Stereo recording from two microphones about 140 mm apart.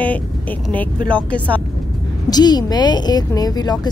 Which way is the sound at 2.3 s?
30° left (ahead or behind).